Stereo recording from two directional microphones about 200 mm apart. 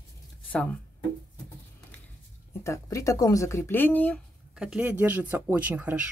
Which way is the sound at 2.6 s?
15° left (ahead or behind).